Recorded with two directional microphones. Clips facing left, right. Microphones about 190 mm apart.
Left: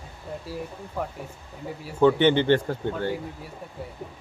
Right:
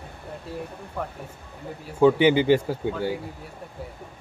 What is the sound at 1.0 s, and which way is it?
Speech, 5° left (ahead or behind).